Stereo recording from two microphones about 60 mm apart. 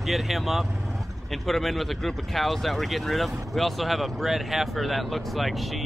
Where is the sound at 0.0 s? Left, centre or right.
Centre.